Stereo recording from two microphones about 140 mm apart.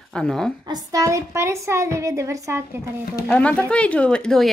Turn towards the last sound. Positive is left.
turn(degrees=5)  # may be behind; listen again after turning